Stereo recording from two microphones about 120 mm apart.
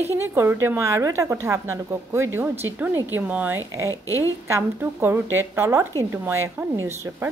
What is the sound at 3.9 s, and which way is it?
Speech, 25° left (ahead or behind).